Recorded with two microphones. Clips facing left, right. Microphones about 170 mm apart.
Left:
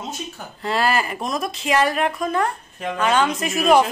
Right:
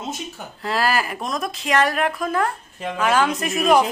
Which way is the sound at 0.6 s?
Centre (ahead or behind).